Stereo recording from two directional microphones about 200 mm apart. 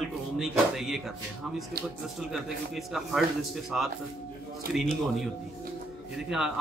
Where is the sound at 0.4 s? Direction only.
Centre (ahead or behind).